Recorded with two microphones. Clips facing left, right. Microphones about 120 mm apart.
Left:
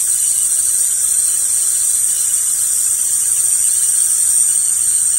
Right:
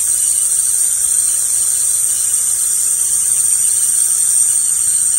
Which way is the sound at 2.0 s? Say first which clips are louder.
Right 1 dB; 90° right.